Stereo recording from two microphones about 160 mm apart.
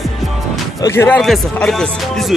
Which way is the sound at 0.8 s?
15° left (ahead or behind).